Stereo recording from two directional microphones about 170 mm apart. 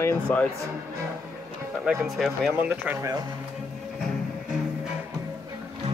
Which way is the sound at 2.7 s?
10° right (ahead or behind).